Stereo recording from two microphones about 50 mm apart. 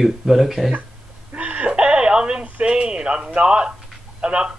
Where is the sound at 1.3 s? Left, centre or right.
Right.